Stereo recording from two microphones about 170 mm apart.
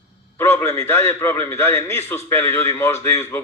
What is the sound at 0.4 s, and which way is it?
A man's voice, 15° left (ahead or behind).